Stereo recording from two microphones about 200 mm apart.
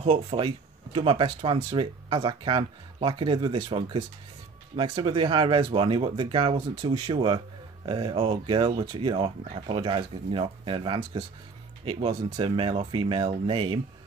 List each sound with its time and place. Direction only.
0.0 s speech: 30° right (ahead or behind)